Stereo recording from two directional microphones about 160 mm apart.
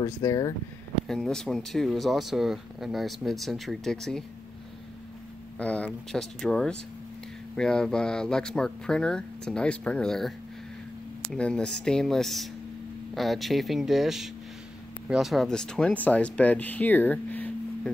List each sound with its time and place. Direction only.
0.0 s speech: 20° left (ahead or behind)
1.0 s speech: 5° left (ahead or behind)
5.6 s speech: 10° left (ahead or behind)
11.3 s speech: 5° left (ahead or behind)